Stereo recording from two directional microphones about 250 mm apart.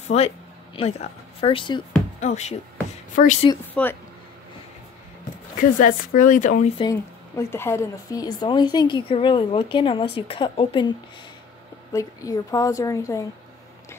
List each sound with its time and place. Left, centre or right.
0.1 s speech: left
3.8 s speech: centre
5.8 s speech: left
6.8 s a woman's voice: centre